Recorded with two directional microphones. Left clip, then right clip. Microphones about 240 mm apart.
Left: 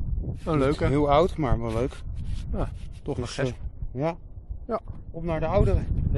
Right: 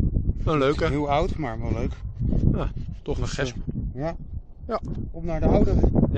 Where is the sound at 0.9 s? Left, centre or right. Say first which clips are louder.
Left 3 dB; left.